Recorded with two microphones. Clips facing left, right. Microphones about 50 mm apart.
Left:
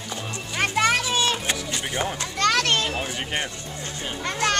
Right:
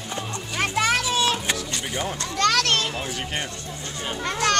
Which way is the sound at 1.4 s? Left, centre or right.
Centre.